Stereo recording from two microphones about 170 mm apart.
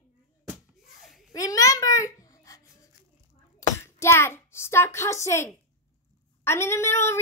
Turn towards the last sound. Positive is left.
turn(degrees=15)  # may be behind; listen again after turning